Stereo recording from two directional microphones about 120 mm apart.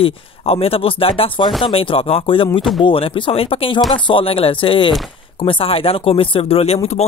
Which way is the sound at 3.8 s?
Centre (ahead or behind).